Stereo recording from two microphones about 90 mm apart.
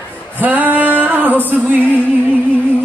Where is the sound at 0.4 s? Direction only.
20° right (ahead or behind).